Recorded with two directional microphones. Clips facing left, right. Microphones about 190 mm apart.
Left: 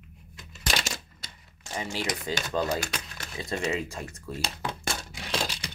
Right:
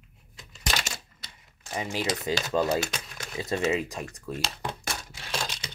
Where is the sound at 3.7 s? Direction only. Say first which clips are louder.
Right 3 dB; 15° right (ahead or behind).